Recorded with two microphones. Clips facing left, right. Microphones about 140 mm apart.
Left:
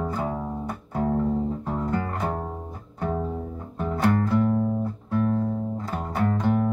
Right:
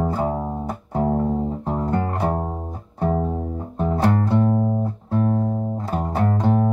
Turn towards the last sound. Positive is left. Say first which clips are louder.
# right 3 dB
turn(degrees=-30)  # may be behind; listen again after turning